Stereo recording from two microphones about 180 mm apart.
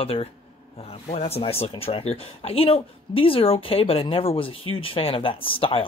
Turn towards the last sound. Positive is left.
turn(degrees=30)  # may be behind; listen again after turning